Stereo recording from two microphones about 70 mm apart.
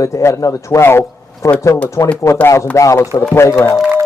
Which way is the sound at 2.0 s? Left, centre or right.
Left.